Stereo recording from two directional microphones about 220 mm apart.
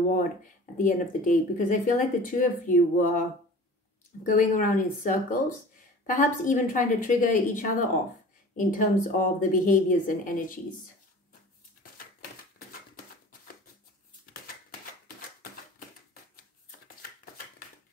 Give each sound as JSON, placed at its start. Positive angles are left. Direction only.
{"t": 0.8, "sound": "speech", "side_deg": 35}
{"t": 4.3, "sound": "speech", "side_deg": 35}